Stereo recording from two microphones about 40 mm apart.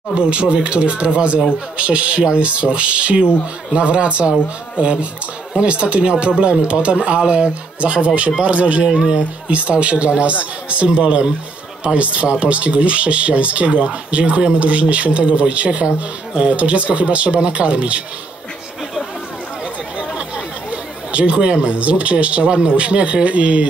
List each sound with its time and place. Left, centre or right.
0.1 s speech: right
8.8 s speech: centre
9.5 s speech: right
20.2 s speech: right